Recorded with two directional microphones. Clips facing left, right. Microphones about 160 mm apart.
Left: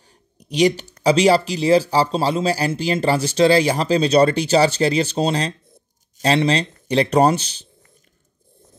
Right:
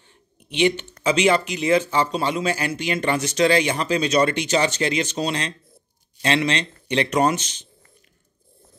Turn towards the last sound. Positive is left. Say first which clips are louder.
# left 4 dB
turn(degrees=35)  # may be behind; listen again after turning